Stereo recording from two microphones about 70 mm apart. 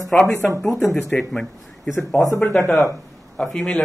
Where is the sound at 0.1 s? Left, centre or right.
Centre.